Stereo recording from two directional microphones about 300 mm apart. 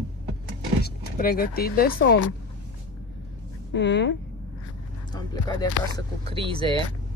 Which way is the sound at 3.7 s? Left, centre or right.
Left.